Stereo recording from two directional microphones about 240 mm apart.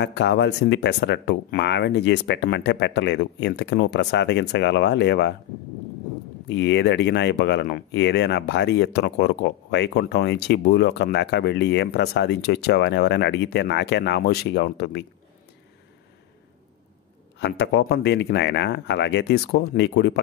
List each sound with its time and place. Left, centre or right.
0.0 s speech: left
6.5 s speech: left
17.4 s speech: left